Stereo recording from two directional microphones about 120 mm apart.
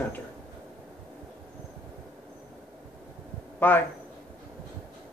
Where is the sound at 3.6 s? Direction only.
15° left (ahead or behind).